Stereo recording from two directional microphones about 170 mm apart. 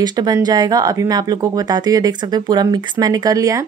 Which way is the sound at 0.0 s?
25° right (ahead or behind).